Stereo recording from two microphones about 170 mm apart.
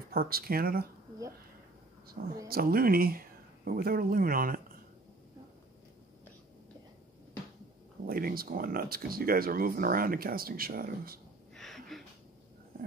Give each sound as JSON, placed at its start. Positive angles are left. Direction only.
{"t": 0.1, "sound": "speech", "side_deg": -60}
{"t": 2.4, "sound": "speech", "side_deg": -60}
{"t": 8.1, "sound": "speech", "side_deg": -60}
{"t": 11.5, "sound": "a sound", "side_deg": 0}